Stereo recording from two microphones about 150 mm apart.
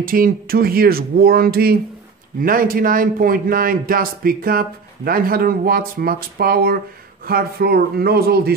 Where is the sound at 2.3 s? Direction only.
70° right (ahead or behind).